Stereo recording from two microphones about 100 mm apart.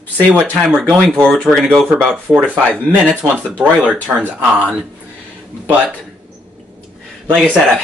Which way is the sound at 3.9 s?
15° right (ahead or behind).